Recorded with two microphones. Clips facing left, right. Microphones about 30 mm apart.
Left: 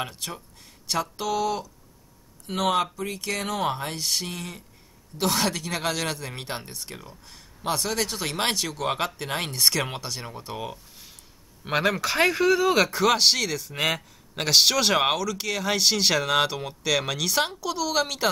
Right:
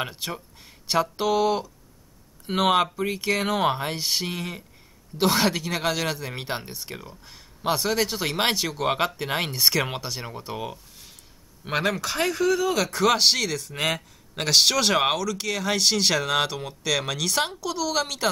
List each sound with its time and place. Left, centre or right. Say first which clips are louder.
0.0 s speech: right 2 dB; centre
12.9 s a man's voice: even; centre